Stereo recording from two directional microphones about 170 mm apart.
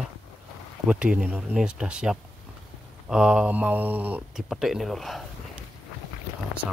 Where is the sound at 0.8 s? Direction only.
5° right (ahead or behind).